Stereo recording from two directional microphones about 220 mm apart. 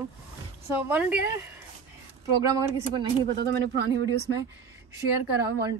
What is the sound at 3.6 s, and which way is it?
Speech, 50° right (ahead or behind).